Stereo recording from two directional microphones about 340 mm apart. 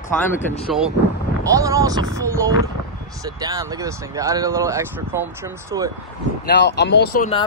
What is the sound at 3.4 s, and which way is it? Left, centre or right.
Speech, centre.